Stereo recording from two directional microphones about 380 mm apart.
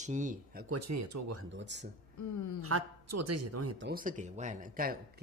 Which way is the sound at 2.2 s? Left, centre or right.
Left.